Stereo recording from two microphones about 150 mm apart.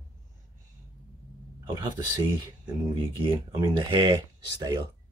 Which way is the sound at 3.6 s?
30° right (ahead or behind).